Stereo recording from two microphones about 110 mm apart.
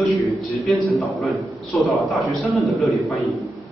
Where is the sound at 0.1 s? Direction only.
Centre (ahead or behind).